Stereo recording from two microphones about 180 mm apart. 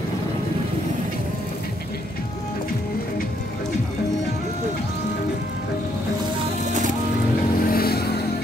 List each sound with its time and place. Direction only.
7.6 s vehicle: 55° left (ahead or behind)